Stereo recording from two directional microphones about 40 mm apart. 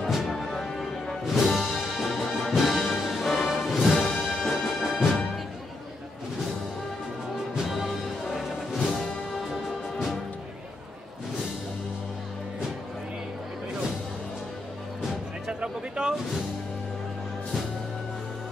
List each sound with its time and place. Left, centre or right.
0.1 s music: centre
0.4 s music: centre
1.2 s music: centre
7.7 s music: centre
9.4 s music: centre
15.6 s a sound: centre